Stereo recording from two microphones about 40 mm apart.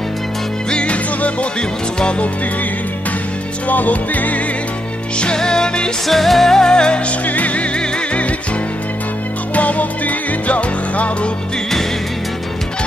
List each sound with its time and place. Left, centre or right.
0.7 s music: left
3.6 s music: left
5.2 s music: centre
6.0 s music: centre
6.7 s music: left
7.2 s music: left
9.5 s music: left